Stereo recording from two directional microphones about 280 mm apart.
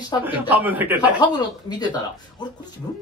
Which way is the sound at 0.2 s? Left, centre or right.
Centre.